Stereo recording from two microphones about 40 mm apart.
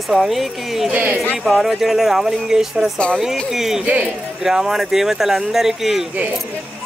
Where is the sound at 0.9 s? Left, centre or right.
Right.